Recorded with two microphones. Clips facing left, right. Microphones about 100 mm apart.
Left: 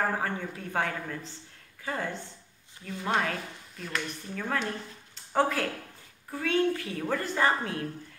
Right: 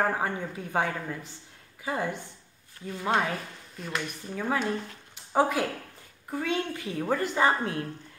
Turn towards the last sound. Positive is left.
turn(degrees=-20)  # may be behind; listen again after turning